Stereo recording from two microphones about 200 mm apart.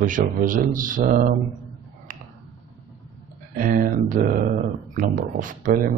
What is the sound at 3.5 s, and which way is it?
Speech, 45° right (ahead or behind).